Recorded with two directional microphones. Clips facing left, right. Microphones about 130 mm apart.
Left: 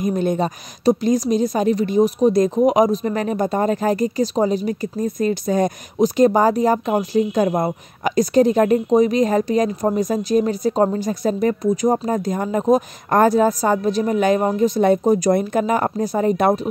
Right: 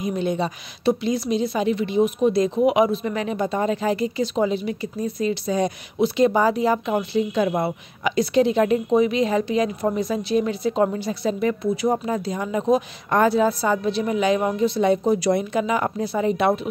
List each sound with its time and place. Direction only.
0.0 s a woman's voice: 45° left (ahead or behind)